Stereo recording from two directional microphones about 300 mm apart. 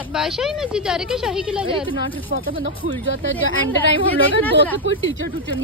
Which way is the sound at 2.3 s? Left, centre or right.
Right.